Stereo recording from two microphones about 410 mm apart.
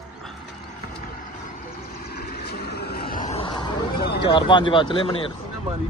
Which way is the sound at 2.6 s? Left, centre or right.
Left.